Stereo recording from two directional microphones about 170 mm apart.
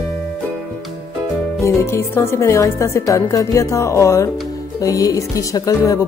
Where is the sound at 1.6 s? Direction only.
15° left (ahead or behind).